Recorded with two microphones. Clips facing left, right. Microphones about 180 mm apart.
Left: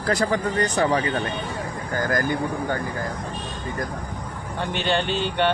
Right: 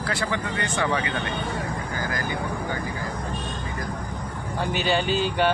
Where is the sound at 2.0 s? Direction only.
50° left (ahead or behind).